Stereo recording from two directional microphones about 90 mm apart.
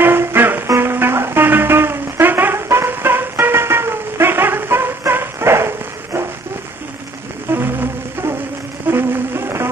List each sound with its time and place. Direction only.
0.0 s music: 25° right (ahead or behind)
7.5 s music: 20° right (ahead or behind)
8.9 s music: 25° right (ahead or behind)